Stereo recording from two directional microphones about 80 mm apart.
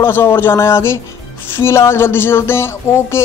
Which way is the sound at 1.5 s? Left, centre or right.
Left.